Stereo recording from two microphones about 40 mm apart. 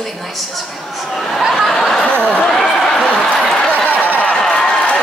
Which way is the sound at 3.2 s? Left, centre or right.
Centre.